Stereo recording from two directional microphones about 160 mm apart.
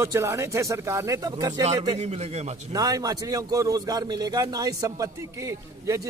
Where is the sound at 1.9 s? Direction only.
40° right (ahead or behind).